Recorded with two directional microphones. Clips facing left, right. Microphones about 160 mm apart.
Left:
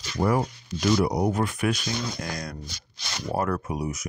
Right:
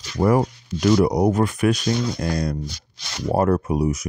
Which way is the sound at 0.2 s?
60° right (ahead or behind).